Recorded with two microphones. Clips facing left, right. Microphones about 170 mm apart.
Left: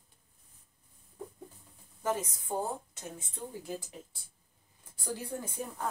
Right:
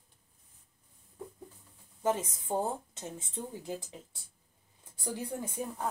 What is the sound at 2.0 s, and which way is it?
A woman's voice, 20° right (ahead or behind).